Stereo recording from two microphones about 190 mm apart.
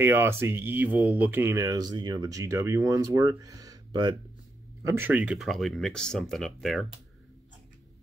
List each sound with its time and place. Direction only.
0.0 s speech: 10° right (ahead or behind)
4.8 s speech: 10° right (ahead or behind)